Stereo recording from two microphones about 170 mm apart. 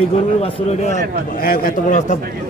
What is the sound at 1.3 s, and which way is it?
Speech, 60° left (ahead or behind).